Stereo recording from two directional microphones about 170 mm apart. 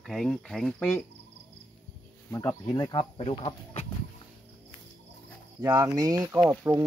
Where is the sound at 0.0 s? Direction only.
Centre (ahead or behind).